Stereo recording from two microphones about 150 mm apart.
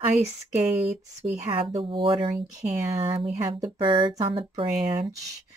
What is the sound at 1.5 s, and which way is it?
Speech, 35° right (ahead or behind).